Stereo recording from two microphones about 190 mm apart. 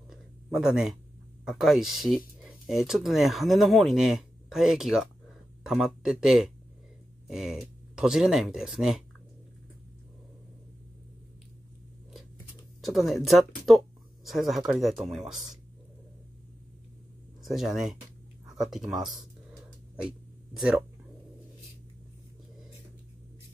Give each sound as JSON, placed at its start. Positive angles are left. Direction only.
{"t": 0.1, "sound": "a sound", "side_deg": 0}
{"t": 1.4, "sound": "speech", "side_deg": 0}
{"t": 12.8, "sound": "speech", "side_deg": 0}
{"t": 17.4, "sound": "speech", "side_deg": 0}